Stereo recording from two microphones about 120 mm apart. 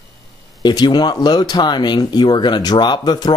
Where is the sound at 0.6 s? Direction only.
35° left (ahead or behind).